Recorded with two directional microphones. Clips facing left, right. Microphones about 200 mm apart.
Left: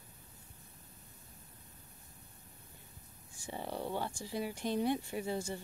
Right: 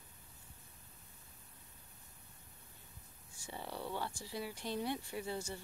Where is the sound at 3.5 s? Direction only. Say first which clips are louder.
Left 4 dB; 20° left (ahead or behind).